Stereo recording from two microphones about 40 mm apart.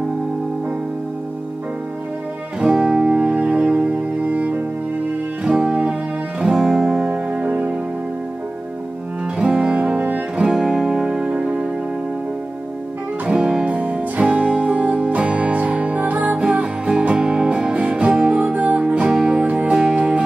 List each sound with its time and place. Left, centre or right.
2.6 s music: right
4.3 s music: right
5.4 s music: right
7.1 s music: right
9.2 s music: right
10.3 s music: centre
11.1 s music: right
13.3 s music: right
13.7 s music: right
16.3 s music: right